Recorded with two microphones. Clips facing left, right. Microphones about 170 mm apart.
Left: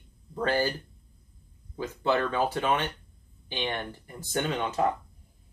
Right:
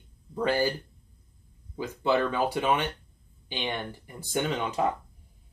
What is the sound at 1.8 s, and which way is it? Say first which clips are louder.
Speech: right 1 dB; 15° right (ahead or behind).